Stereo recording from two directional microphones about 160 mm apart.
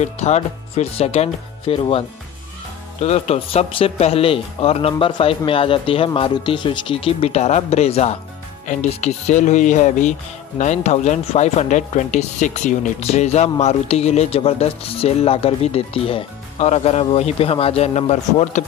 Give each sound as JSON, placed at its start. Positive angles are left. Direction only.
{"t": 0.0, "sound": "speech", "side_deg": 45}